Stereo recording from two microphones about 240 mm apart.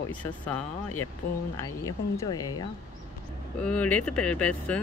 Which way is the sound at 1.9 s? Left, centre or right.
Centre.